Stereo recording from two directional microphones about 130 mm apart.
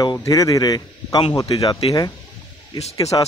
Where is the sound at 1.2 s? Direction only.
45° left (ahead or behind).